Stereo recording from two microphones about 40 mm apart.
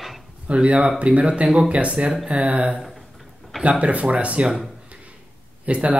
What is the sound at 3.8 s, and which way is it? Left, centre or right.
Speech, right.